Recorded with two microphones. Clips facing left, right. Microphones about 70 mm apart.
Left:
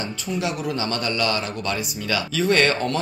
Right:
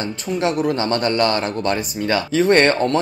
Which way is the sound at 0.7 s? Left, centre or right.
Right.